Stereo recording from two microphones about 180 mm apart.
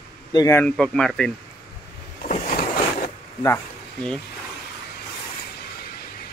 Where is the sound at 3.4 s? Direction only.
10° left (ahead or behind).